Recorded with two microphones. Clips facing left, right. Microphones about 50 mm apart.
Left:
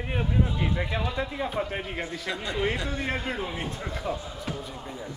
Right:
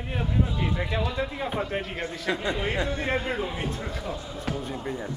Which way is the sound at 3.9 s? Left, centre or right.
Centre.